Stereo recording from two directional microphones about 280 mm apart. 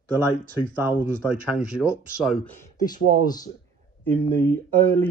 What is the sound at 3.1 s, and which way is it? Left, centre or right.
Speech, right.